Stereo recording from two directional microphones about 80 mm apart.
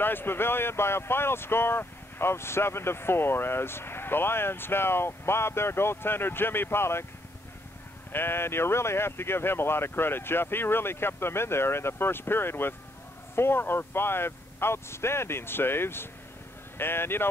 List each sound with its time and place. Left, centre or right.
0.0 s speech: left
8.1 s speech: left